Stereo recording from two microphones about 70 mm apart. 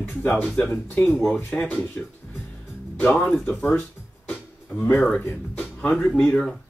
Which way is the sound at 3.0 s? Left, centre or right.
Left.